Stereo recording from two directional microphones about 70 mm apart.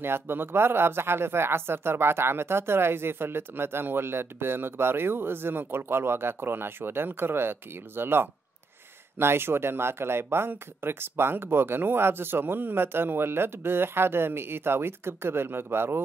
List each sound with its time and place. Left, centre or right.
0.0 s speech: right